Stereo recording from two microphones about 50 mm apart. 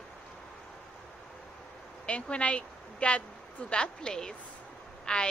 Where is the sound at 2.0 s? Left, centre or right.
Left.